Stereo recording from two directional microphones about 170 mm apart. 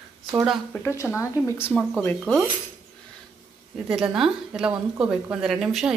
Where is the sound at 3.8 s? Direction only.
5° right (ahead or behind).